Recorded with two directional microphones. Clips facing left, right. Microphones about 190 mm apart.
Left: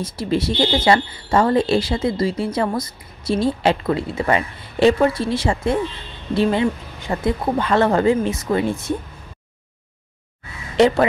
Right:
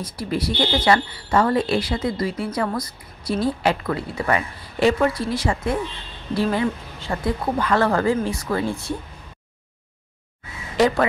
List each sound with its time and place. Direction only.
0.0 s speech: 25° left (ahead or behind)